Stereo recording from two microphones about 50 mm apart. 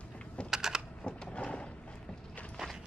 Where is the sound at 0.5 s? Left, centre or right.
Centre.